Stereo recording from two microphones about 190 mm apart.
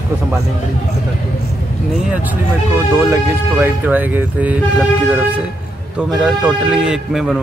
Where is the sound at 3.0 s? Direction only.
10° right (ahead or behind).